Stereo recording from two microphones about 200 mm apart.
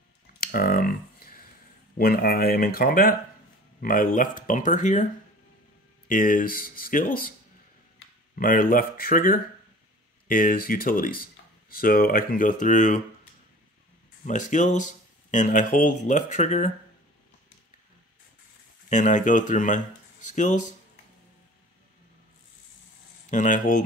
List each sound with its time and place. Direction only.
0.4 s a sound: 45° left (ahead or behind)
2.0 s speech: 50° left (ahead or behind)
6.0 s speech: 45° left (ahead or behind)
8.4 s speech: 45° left (ahead or behind)
14.2 s speech: 40° left (ahead or behind)
18.9 s speech: 40° left (ahead or behind)
23.3 s speech: 40° left (ahead or behind)